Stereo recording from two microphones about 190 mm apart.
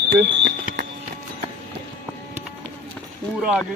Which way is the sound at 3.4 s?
5° right (ahead or behind).